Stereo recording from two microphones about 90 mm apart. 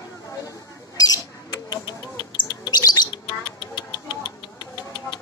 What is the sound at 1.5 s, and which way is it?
Bird, 55° left (ahead or behind).